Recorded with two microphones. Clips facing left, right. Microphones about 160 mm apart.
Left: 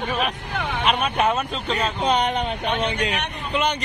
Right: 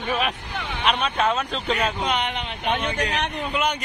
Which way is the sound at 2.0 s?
35° left (ahead or behind).